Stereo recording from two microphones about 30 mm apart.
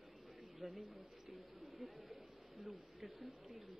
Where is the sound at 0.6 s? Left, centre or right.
Centre.